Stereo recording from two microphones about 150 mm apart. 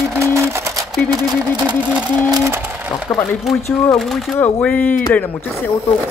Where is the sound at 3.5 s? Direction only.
Centre (ahead or behind).